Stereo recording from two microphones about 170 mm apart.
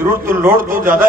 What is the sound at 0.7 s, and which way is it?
Speech, 55° right (ahead or behind).